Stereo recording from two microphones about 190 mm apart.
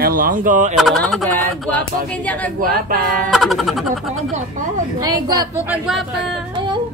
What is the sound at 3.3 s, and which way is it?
Speech, centre (ahead or behind).